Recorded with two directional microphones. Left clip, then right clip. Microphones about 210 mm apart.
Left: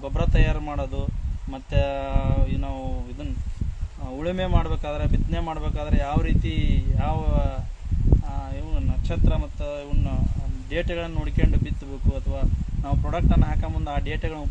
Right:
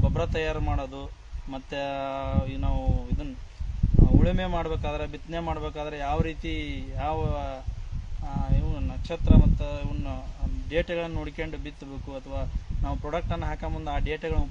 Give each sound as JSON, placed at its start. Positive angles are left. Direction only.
{"t": 0.0, "sound": "speech", "side_deg": -15}
{"t": 4.2, "sound": "speech", "side_deg": -15}
{"t": 9.1, "sound": "speech", "side_deg": -15}